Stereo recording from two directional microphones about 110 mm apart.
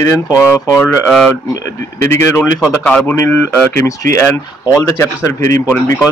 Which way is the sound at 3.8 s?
30° left (ahead or behind).